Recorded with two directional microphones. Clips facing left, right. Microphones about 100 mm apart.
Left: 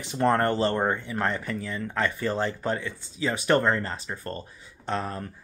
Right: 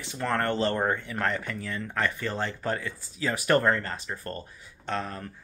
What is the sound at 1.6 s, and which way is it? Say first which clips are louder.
Speech: left 2 dB; 10° left (ahead or behind).